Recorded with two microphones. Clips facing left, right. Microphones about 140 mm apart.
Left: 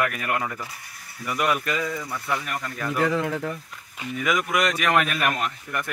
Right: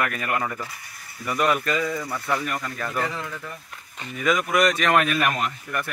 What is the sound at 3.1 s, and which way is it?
Speech, 65° left (ahead or behind).